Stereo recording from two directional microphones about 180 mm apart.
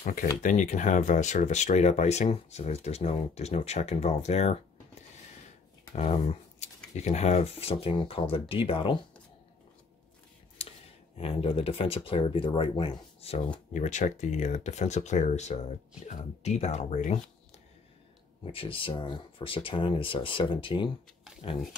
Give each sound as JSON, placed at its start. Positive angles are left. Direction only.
{"t": 0.0, "sound": "speech", "side_deg": 50}
{"t": 5.9, "sound": "speech", "side_deg": 35}
{"t": 11.1, "sound": "speech", "side_deg": 35}
{"t": 13.7, "sound": "speech", "side_deg": 40}
{"t": 18.4, "sound": "speech", "side_deg": 30}